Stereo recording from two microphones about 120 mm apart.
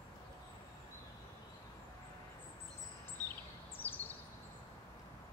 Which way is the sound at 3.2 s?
30° right (ahead or behind).